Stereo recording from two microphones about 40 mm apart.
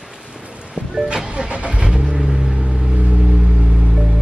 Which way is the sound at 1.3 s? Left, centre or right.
Right.